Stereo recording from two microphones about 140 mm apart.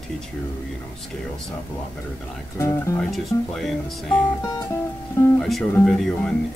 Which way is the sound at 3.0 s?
Centre (ahead or behind).